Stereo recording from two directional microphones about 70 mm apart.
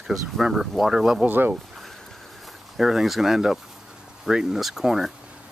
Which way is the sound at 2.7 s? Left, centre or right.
Centre.